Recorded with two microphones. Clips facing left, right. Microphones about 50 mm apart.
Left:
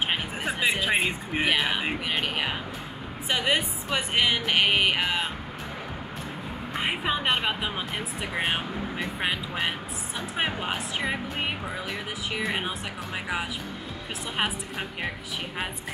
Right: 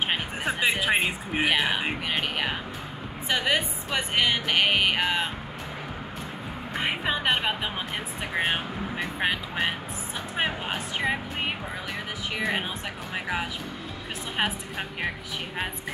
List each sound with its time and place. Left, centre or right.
0.1 s music: centre
0.7 s speech: centre
6.7 s music: centre
8.4 s speech: centre